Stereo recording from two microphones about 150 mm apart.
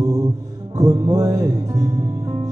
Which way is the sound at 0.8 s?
20° right (ahead or behind).